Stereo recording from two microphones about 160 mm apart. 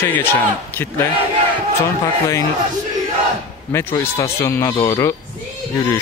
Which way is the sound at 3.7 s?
15° left (ahead or behind).